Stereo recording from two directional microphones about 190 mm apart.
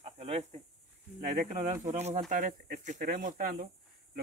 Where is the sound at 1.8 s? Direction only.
35° right (ahead or behind).